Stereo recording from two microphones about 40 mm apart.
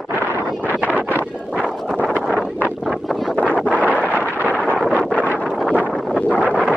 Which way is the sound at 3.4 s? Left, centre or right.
Left.